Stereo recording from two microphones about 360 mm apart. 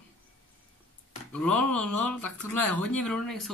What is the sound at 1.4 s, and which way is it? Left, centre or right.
Speech, centre.